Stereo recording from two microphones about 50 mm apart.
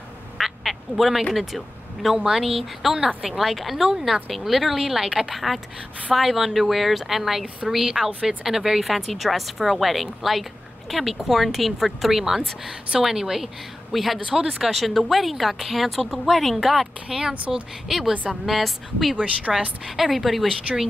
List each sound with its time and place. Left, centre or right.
0.4 s quack: centre
2.0 s a woman's voice: centre
19.1 s speech: right
20.0 s speech: centre
20.7 s speech: right